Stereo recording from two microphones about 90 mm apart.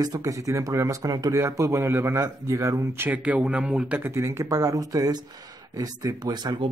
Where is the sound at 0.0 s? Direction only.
40° right (ahead or behind).